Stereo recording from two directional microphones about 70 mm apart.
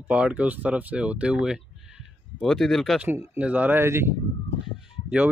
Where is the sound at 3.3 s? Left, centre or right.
Right.